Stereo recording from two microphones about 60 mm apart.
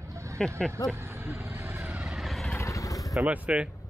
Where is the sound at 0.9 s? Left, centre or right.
Right.